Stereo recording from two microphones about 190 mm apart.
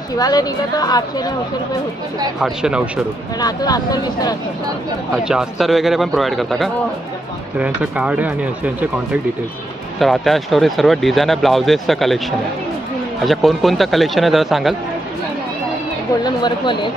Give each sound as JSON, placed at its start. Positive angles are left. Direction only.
{"t": 0.2, "sound": "speech", "side_deg": 20}
{"t": 2.4, "sound": "speech", "side_deg": -5}
{"t": 3.3, "sound": "speech", "side_deg": 20}
{"t": 5.1, "sound": "speech", "side_deg": -5}
{"t": 16.4, "sound": "speech", "side_deg": 25}